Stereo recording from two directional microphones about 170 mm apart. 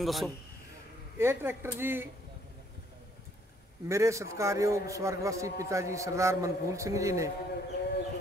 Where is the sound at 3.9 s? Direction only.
15° right (ahead or behind).